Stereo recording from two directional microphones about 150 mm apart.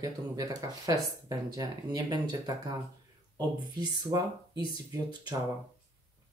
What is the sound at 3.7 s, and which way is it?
Speech, 25° right (ahead or behind).